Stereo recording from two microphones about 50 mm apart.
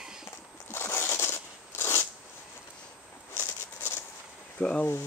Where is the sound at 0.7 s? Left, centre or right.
Left.